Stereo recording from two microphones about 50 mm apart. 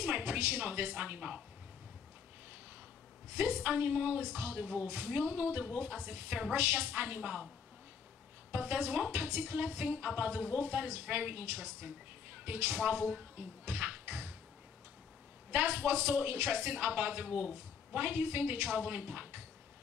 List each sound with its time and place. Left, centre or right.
0.4 s speech: right
0.7 s a woman's voice: right
3.3 s a woman's voice: right
4.2 s a woman's voice: right
6.9 s a woman's voice: right
8.5 s a woman's voice: right
11.4 s a woman's voice: right
11.8 s a sound: right
12.5 s speech: right
13.4 s music: right
14.0 s music: right
15.5 s speech: right
16.7 s a woman's voice: right